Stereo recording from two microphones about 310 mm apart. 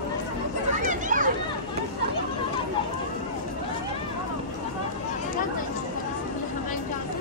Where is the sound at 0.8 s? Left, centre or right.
Right.